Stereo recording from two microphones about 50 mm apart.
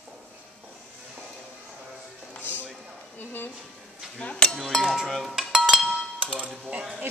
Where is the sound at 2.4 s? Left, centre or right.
Right.